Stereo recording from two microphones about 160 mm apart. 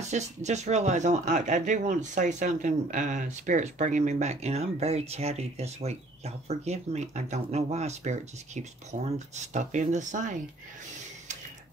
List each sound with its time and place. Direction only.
0.1 s speech: 45° right (ahead or behind)